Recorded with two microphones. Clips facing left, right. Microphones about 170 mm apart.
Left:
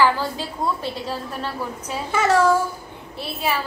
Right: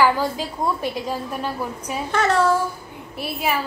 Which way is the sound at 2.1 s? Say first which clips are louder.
Left 2 dB; 10° left (ahead or behind).